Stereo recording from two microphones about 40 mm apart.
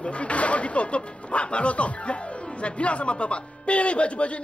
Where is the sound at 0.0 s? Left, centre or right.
Left.